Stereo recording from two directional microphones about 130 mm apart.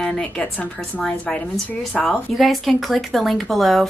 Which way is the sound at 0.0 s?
10° left (ahead or behind).